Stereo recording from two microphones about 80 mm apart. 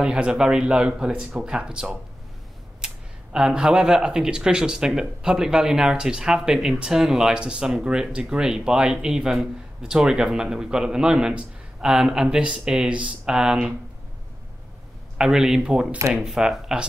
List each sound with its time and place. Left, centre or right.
0.0 s speech: centre
3.3 s speech: centre
15.1 s speech: centre